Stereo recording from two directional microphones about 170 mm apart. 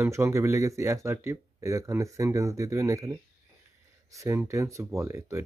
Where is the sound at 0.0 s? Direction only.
15° right (ahead or behind).